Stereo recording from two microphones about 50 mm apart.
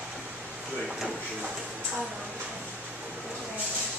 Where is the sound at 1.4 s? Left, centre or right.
Centre.